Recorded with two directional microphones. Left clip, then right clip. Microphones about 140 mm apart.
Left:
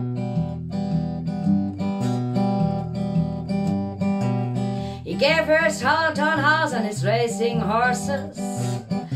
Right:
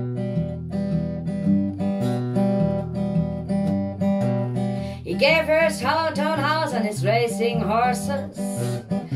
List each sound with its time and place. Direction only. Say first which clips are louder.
2.0 s guitar: even; 15° left (ahead or behind)
5.2 s music: even; 10° right (ahead or behind)